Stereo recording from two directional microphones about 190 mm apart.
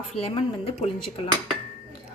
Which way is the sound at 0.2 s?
30° left (ahead or behind).